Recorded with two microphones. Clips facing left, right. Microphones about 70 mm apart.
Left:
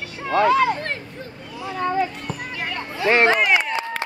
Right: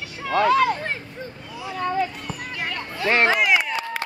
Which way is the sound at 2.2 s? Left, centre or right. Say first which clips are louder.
Left 1 dB; centre.